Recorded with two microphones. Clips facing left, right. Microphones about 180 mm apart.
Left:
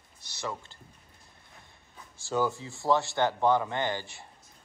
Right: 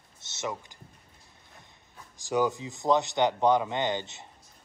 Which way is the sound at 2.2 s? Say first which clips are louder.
Right 2 dB; 15° right (ahead or behind).